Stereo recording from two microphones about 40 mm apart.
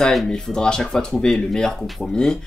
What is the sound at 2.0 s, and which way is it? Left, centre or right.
Speech, centre.